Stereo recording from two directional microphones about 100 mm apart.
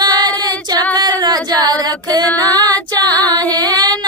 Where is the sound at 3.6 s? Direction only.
40° right (ahead or behind).